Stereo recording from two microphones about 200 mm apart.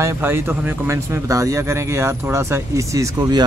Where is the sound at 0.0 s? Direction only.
10° right (ahead or behind).